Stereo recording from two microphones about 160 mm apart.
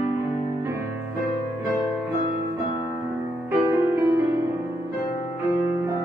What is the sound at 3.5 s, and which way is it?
Music, 20° right (ahead or behind).